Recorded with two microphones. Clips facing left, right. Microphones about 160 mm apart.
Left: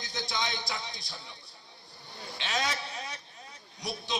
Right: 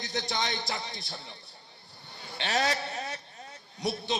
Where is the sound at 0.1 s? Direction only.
40° right (ahead or behind).